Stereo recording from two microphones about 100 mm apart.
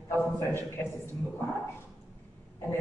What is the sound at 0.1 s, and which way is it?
Speech, 20° left (ahead or behind).